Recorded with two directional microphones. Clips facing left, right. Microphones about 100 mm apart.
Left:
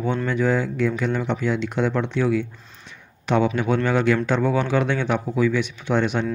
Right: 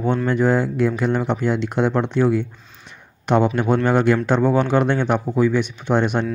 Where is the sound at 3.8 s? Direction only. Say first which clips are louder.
Right 3 dB; 50° right (ahead or behind).